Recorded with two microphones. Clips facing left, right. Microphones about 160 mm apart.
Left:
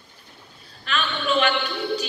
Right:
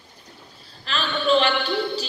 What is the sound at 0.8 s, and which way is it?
Speech, 35° right (ahead or behind).